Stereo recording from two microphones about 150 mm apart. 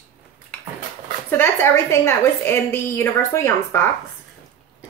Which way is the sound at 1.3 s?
15° left (ahead or behind).